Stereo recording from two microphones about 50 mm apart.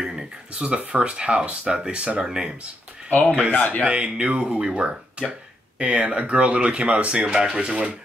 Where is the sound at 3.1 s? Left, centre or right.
Left.